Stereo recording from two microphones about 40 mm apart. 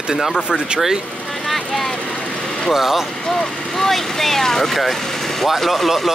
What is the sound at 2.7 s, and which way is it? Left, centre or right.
Speech, centre.